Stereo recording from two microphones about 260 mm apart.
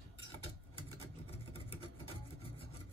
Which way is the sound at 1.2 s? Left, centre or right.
Left.